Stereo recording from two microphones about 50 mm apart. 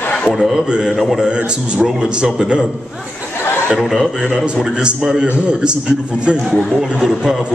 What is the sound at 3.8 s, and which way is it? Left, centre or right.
Speech, centre.